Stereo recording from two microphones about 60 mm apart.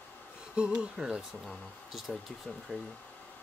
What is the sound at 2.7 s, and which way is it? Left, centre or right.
Speech, centre.